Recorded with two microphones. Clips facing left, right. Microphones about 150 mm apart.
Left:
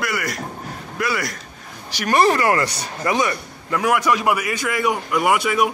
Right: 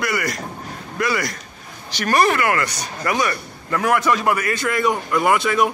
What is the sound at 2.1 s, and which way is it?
Speech, 30° left (ahead or behind).